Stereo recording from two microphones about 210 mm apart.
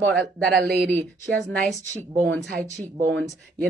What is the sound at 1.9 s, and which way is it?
Speech, 15° right (ahead or behind).